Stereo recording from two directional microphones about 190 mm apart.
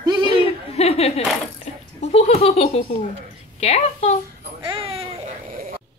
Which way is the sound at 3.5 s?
35° left (ahead or behind).